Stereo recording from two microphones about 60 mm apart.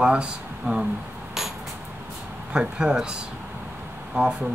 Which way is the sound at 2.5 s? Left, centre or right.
Centre.